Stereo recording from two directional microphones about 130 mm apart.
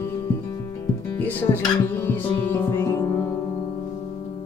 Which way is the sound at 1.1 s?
15° left (ahead or behind).